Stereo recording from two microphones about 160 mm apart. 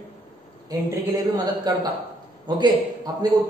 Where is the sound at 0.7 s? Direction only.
25° right (ahead or behind).